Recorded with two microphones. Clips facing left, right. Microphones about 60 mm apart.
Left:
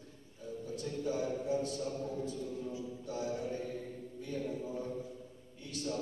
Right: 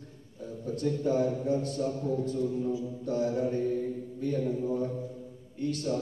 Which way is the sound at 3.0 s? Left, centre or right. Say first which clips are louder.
Right 9 dB; right.